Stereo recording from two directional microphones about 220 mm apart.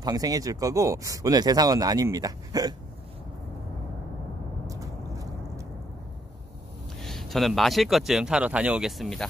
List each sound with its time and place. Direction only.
0.0 s speech: 15° right (ahead or behind)
4.6 s vehicle: 15° right (ahead or behind)
7.0 s speech: centre (ahead or behind)